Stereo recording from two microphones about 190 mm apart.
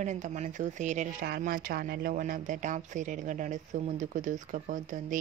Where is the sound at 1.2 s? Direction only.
55° right (ahead or behind).